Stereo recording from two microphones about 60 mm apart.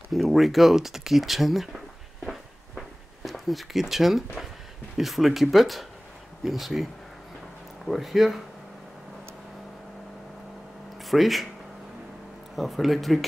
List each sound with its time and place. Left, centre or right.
0.1 s speech: centre
3.3 s speech: centre
11.1 s speech: centre
12.5 s speech: centre